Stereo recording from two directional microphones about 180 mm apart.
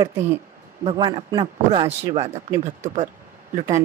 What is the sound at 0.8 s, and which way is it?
A man's voice, 30° right (ahead or behind).